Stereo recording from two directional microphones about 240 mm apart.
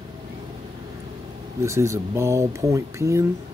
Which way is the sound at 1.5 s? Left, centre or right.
Centre.